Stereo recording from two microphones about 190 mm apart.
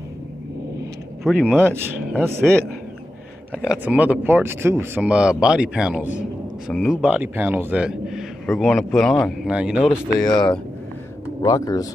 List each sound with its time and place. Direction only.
1.2 s a man's voice: centre (ahead or behind)
1.7 s speech: 10° right (ahead or behind)
3.5 s a man's voice: 5° right (ahead or behind)
10.1 s speech: 20° left (ahead or behind)